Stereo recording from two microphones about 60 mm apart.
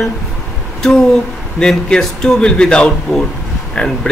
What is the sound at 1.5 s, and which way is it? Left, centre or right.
Speech, centre.